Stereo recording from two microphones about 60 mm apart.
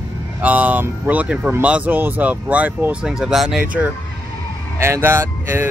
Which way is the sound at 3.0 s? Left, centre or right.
Centre.